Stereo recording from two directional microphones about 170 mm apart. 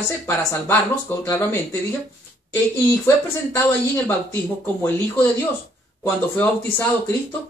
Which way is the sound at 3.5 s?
15° left (ahead or behind).